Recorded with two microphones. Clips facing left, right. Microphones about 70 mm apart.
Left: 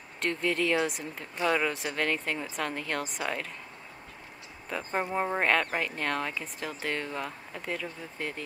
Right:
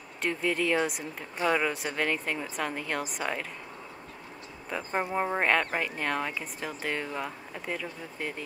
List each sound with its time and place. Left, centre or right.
0.2 s speech: centre
4.6 s speech: centre